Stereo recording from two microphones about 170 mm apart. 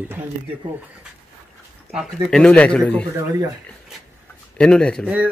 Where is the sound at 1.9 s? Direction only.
Centre (ahead or behind).